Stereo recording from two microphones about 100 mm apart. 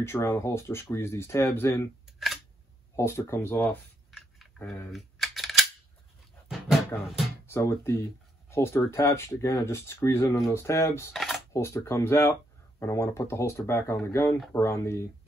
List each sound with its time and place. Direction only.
0.0 s speech: 25° left (ahead or behind)
3.0 s speech: 25° left (ahead or behind)
4.9 s computer keyboard: centre (ahead or behind)
6.5 s music: centre (ahead or behind)
7.4 s speech: 25° left (ahead or behind)
11.1 s a sound: centre (ahead or behind)
11.5 s speech: 30° left (ahead or behind)